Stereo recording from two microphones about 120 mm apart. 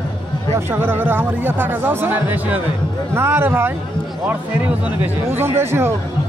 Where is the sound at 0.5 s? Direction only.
20° right (ahead or behind).